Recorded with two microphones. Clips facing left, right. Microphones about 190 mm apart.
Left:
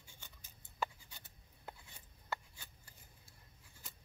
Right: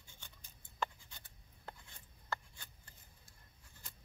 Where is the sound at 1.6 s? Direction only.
10° left (ahead or behind).